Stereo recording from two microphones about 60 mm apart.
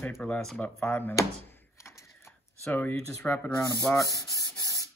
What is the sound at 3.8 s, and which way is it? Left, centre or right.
Rub, left.